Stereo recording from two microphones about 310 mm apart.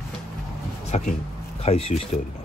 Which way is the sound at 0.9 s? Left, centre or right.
Left.